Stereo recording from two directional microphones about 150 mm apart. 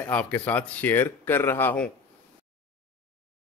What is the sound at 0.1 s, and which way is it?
Speech, 10° left (ahead or behind).